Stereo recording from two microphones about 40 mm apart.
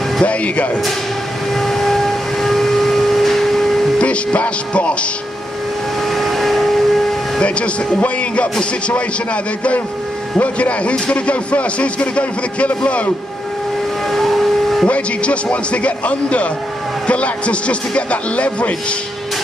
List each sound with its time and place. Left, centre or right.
0.2 s speech: left
1.5 s vehicle: centre
4.0 s music: left
6.0 s vehicle: centre
7.4 s speech: left
14.1 s civil defense siren: centre
14.9 s speech: left